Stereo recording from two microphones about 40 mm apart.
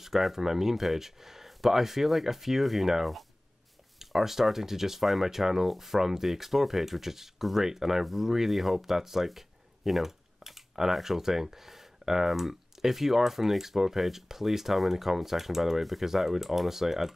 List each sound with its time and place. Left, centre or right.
0.0 s speech: centre